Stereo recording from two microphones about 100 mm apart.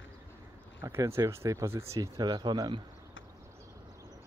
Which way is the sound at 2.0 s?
40° right (ahead or behind).